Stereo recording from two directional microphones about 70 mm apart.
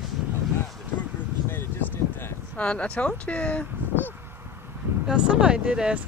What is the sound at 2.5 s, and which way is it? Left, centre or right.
Speech, centre.